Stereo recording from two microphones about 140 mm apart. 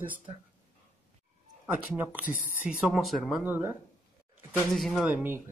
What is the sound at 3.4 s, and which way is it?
Speech, 10° right (ahead or behind).